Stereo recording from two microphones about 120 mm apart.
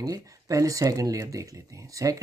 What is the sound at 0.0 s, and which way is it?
Speech, 30° right (ahead or behind).